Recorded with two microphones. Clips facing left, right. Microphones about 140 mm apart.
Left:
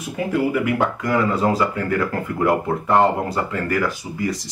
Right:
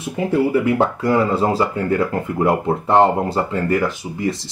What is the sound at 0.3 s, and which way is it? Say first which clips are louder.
Speech: right 3 dB; 30° right (ahead or behind).